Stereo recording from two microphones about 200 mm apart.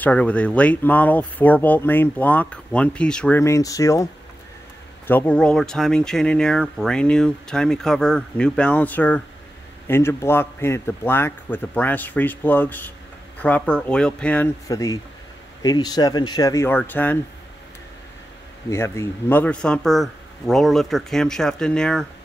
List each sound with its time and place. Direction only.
0.0 s speech: 5° left (ahead or behind)
18.7 s speech: 15° left (ahead or behind)